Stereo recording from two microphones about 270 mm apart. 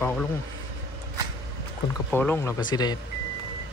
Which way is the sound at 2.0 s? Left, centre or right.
Centre.